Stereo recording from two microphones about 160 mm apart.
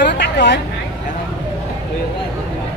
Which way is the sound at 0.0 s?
90° left.